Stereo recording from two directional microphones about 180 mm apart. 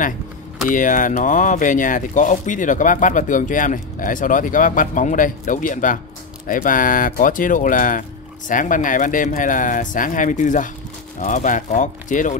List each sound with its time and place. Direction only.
0.7 s speech: 45° left (ahead or behind)